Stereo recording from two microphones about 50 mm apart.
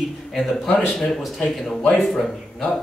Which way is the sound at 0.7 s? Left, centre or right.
Left.